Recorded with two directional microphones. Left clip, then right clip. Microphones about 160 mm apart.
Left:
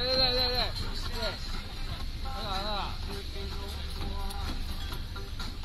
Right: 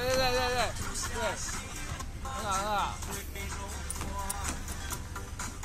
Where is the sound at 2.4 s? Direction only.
35° right (ahead or behind).